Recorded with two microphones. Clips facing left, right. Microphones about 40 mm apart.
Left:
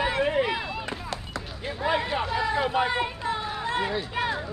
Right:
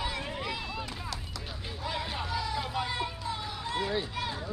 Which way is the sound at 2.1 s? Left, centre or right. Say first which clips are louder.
Left 7 dB; left.